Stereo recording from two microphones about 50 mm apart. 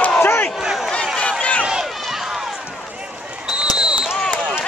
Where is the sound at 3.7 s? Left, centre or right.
Centre.